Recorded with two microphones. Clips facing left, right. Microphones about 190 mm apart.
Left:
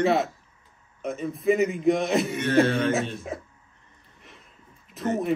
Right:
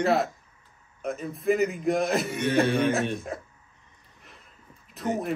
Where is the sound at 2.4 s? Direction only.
55° left (ahead or behind).